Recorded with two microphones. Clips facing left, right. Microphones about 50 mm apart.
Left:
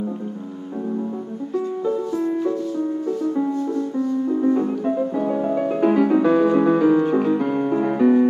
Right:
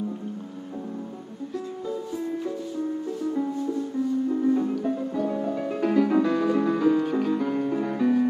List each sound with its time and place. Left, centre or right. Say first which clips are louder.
4.5 s music: left 4 dB; left